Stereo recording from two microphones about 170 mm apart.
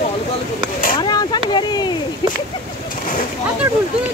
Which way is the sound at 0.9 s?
25° left (ahead or behind).